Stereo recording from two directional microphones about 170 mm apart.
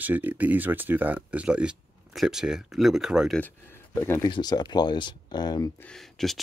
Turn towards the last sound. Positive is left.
turn(degrees=0)  # may be behind; listen again after turning